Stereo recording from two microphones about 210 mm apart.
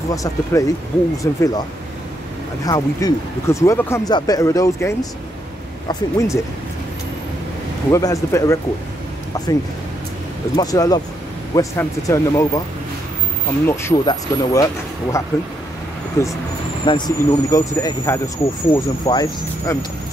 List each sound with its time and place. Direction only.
0.1 s speech: 15° left (ahead or behind)
2.6 s speech: 15° left (ahead or behind)
7.9 s speech: 15° left (ahead or behind)
10.5 s speech: 15° left (ahead or behind)
13.7 s speech: 15° left (ahead or behind)